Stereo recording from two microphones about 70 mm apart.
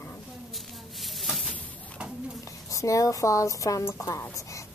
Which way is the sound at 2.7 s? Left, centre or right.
Left.